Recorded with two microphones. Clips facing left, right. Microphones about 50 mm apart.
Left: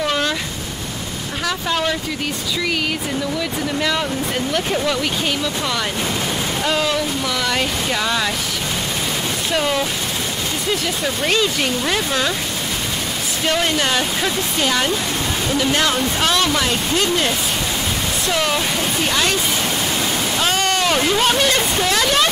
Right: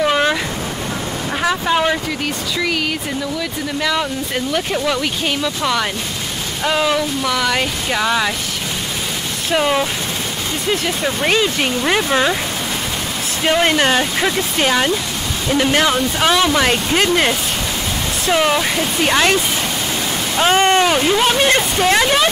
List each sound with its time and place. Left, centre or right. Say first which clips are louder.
0.0 s vehicle: right 5 dB; right
1.4 s speech: right 4 dB; right
6.6 s speech: right 4 dB; centre
9.5 s speech: right 4 dB; centre
13.7 s speech: right 4 dB; right
13.9 s speech: right 3 dB; right
15.5 s speech: right 4 dB; right
15.8 s speech: right 3 dB; centre
16.6 s speech: right 3 dB; right
18.3 s speech: right 5 dB; centre
19.0 s speech: right 6 dB; right
20.3 s speech: right 8 dB; right
20.8 s speech: right 2 dB; centre
21.8 s speech: right 6 dB; right